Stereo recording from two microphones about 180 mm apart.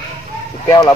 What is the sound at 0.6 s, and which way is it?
Speech, 20° left (ahead or behind).